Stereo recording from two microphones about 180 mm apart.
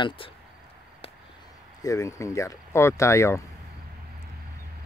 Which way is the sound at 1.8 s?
15° left (ahead or behind).